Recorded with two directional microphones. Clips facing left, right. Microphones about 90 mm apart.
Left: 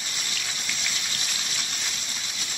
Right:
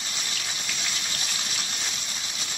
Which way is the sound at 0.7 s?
35° right (ahead or behind).